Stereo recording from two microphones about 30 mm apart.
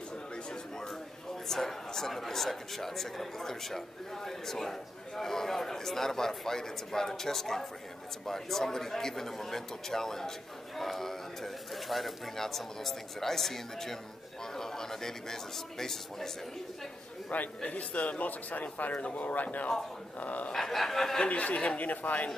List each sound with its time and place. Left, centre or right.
0.5 s a sound: centre
1.5 s speech: centre
17.3 s speech: left
20.5 s speech: centre
21.3 s speech: left
21.8 s speech: left